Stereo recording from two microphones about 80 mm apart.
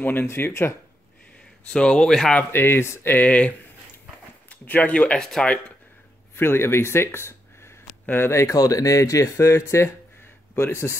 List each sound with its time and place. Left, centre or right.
0.0 s speech: left
1.7 s speech: centre
2.5 s speech: left; by 5.6 s centre
6.3 s speech: left